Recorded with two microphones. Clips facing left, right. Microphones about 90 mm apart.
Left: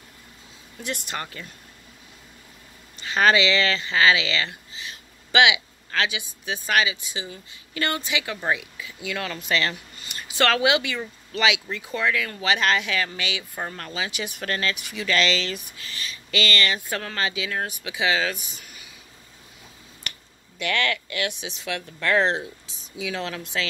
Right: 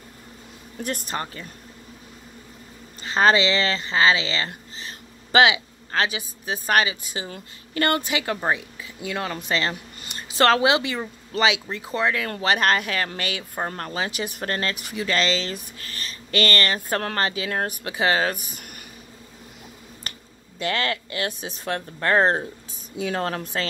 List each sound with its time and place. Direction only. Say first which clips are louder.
0.7 s speech: right 3 dB; 40° right (ahead or behind)
3.0 s speech: right 1 dB; 35° right (ahead or behind)
15.8 s speech: even; 45° right (ahead or behind)
18.6 s a sound: right 4 dB; 60° right (ahead or behind)
20.1 s finger snapping: even; 35° right (ahead or behind)
20.5 s speech: even; 35° right (ahead or behind)